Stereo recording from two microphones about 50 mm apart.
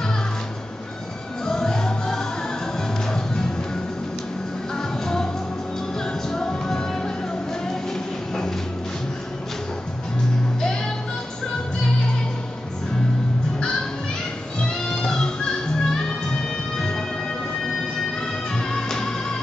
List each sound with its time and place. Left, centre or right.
1.4 s music: centre
5.0 s music: centre
6.3 s music: centre
14.6 s music: centre
18.5 s music: centre